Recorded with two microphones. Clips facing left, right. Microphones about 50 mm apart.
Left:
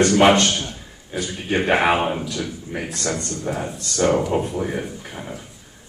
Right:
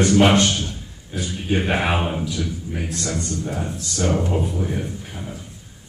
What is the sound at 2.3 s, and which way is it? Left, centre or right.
Speech, left.